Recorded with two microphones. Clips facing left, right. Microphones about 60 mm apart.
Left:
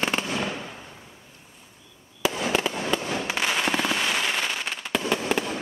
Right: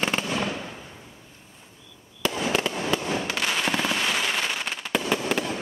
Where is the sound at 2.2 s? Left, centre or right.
Centre.